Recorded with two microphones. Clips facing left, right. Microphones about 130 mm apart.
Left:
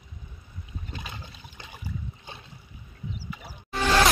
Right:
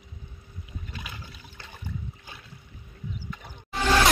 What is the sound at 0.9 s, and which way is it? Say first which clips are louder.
Boat: left 3 dB; 25° left (ahead or behind).